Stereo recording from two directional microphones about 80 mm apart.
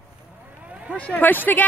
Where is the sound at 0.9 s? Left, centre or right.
Centre.